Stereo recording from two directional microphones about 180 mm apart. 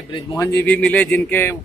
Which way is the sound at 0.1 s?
20° left (ahead or behind).